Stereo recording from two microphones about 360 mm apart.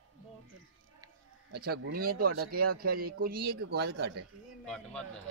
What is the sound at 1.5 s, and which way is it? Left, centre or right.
A man's voice, right.